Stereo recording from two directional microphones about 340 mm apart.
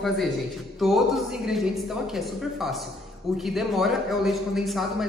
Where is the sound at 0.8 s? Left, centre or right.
Centre.